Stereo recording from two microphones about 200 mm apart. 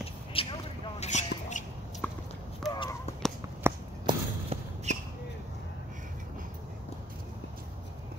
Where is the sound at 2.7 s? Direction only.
20° left (ahead or behind).